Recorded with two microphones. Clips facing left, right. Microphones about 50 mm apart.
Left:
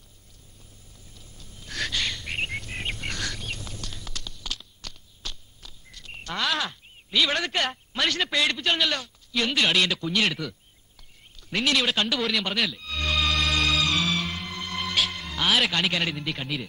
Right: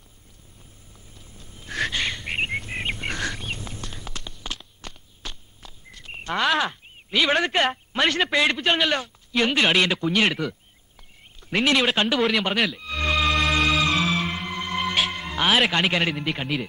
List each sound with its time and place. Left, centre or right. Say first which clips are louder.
1.4 s a sound: right 5 dB; right
6.6 s speech: right 5 dB; right
11.5 s speech: right 4 dB; right
12.7 s music: right 4 dB; right
15.8 s speech: right 4 dB; centre